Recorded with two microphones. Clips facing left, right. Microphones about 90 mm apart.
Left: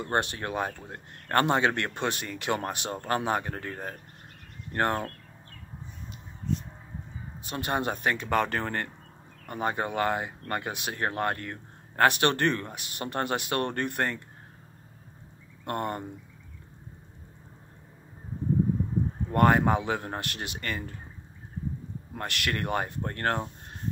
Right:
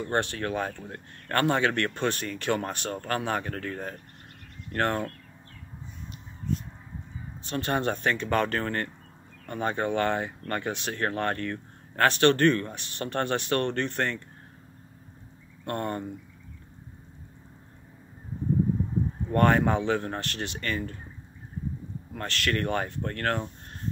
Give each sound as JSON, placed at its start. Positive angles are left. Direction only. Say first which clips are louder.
{"t": 0.0, "sound": "speech", "louder": "right 1 dB", "side_deg": 15}
{"t": 7.4, "sound": "speech", "louder": "right 2 dB", "side_deg": 15}
{"t": 15.6, "sound": "speech", "louder": "even", "side_deg": 20}
{"t": 19.3, "sound": "speech", "louder": "even", "side_deg": 15}
{"t": 22.1, "sound": "speech", "louder": "right 3 dB", "side_deg": 15}